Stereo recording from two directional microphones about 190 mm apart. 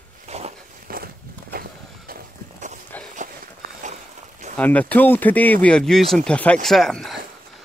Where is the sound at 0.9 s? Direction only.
50° right (ahead or behind).